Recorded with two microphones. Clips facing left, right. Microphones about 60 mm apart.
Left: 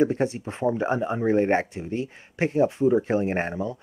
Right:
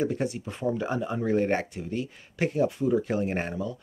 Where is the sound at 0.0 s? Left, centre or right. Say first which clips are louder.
Left 5 dB; left.